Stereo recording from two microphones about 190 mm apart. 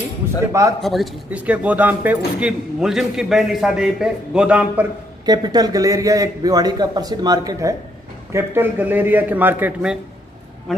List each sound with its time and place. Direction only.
0.5 s a man's voice: 15° right (ahead or behind)
0.7 s speech: centre (ahead or behind)
5.2 s a man's voice: 20° right (ahead or behind)